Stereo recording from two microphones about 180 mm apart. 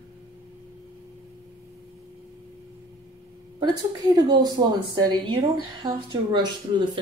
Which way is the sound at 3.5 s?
20° right (ahead or behind).